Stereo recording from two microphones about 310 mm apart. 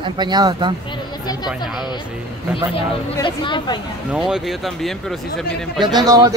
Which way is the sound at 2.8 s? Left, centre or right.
Centre.